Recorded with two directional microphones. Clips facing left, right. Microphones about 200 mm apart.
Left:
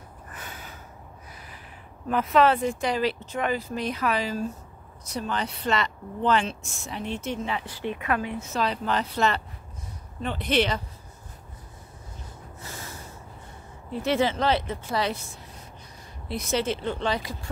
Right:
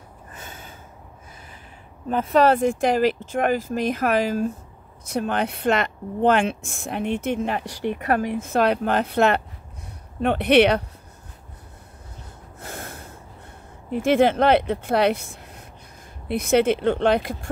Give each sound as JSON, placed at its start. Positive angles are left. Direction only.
{"t": 0.3, "sound": "gasp", "side_deg": -25}
{"t": 2.0, "sound": "speech", "side_deg": -30}
{"t": 12.5, "sound": "snort", "side_deg": -55}
{"t": 14.0, "sound": "speech", "side_deg": -55}